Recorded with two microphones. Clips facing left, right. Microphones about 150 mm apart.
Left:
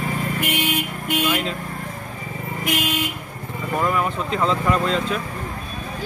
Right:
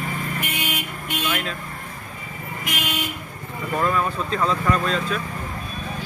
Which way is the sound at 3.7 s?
15° left (ahead or behind).